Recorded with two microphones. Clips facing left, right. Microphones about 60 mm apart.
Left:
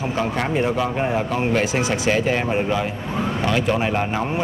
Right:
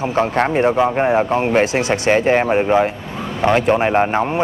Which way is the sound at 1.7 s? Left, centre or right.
Right.